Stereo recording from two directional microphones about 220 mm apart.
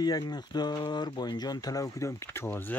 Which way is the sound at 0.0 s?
20° left (ahead or behind).